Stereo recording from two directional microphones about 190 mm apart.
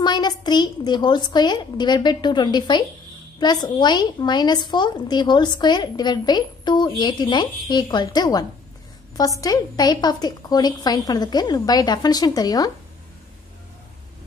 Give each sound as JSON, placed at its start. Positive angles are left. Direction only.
{"t": 0.0, "sound": "speech", "side_deg": 20}